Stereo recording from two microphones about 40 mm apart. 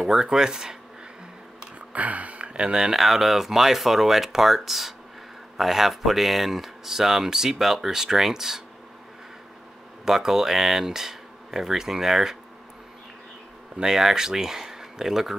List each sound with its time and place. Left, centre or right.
0.0 s speech: centre
1.8 s speech: right; by 3.0 s centre
3.0 s speech: centre
10.0 s speech: centre
13.7 s speech: centre